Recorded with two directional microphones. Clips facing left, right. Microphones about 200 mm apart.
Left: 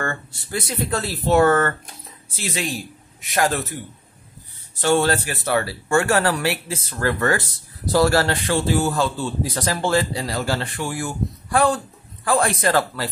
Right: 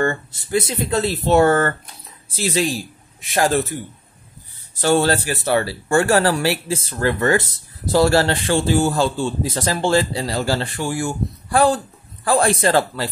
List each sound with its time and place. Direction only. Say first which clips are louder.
0.0 s speech: right 7 dB; 20° right (ahead or behind)
3.2 s a man's voice: right 3 dB; 30° right (ahead or behind)
4.8 s speech: right 2 dB; 35° right (ahead or behind)